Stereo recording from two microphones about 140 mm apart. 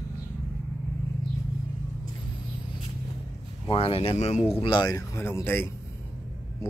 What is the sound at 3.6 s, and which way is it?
Speech, 45° left (ahead or behind).